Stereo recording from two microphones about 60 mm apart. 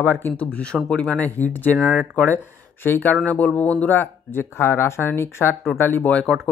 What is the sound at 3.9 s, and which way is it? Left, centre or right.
Speech, left.